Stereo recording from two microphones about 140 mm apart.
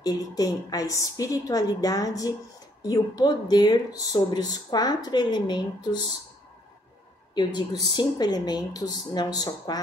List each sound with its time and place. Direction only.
0.0 s speech: 25° left (ahead or behind)
7.9 s speech: 30° left (ahead or behind)